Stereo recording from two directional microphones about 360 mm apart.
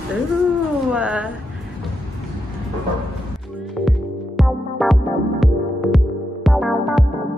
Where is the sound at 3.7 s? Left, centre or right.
Centre.